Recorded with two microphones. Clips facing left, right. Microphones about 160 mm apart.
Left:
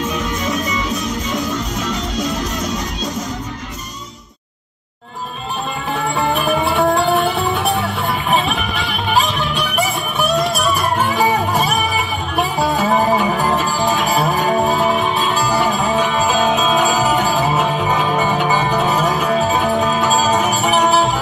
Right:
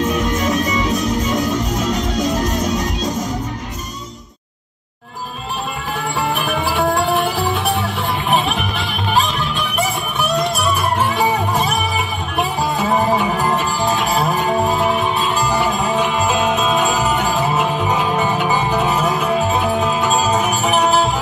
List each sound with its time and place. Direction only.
0.7 s music: centre (ahead or behind)
1.6 s music: 40° right (ahead or behind)
2.7 s music: centre (ahead or behind)
6.1 s music: 5° right (ahead or behind)
11.0 s music: centre (ahead or behind)